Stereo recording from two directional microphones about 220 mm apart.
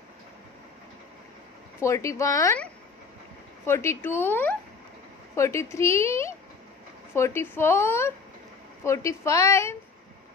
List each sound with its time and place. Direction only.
1.8 s a woman's voice: 15° left (ahead or behind)